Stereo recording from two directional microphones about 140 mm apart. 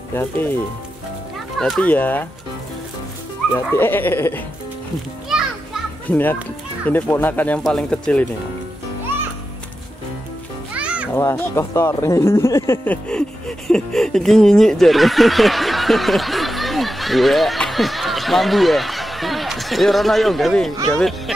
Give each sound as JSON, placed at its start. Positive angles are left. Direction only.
{"t": 0.1, "sound": "speech", "side_deg": 15}
{"t": 1.6, "sound": "speech", "side_deg": 5}
{"t": 3.5, "sound": "speech", "side_deg": 15}
{"t": 6.0, "sound": "a child's voice", "side_deg": 15}
{"t": 10.7, "sound": "music", "side_deg": -10}
{"t": 11.1, "sound": "speech", "side_deg": 20}